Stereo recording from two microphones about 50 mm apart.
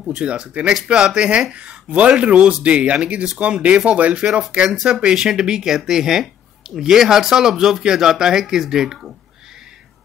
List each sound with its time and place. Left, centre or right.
0.0 s speech: centre